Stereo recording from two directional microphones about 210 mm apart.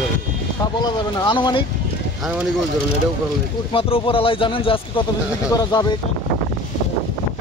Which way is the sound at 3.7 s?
25° left (ahead or behind).